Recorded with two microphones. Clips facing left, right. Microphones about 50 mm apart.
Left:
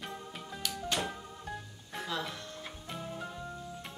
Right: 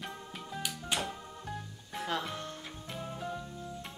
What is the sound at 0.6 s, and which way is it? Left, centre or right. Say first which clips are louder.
Music: left 4 dB; centre.